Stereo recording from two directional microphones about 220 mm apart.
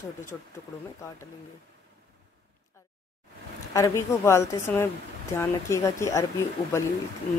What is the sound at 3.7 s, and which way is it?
Speech, 15° left (ahead or behind).